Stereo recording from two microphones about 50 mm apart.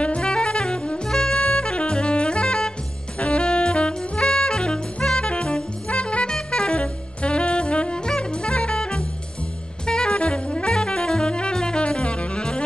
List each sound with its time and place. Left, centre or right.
0.0 s saxophone: centre